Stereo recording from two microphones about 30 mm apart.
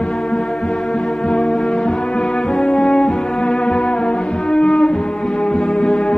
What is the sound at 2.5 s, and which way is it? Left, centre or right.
French horn, left.